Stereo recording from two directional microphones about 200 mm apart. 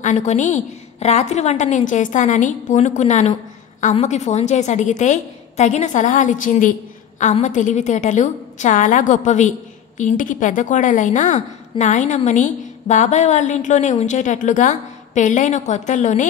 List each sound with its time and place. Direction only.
0.0 s a woman's voice: 35° left (ahead or behind)